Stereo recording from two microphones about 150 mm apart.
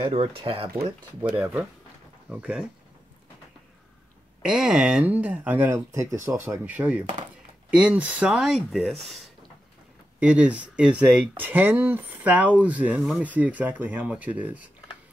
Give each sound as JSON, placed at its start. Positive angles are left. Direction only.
{"t": 0.0, "sound": "speech", "side_deg": -40}
{"t": 1.2, "sound": "speech", "side_deg": -10}
{"t": 4.4, "sound": "speech", "side_deg": -5}
{"t": 10.2, "sound": "speech", "side_deg": -10}